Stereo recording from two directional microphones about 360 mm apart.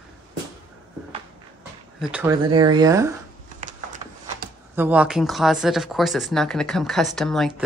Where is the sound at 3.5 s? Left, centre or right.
Right.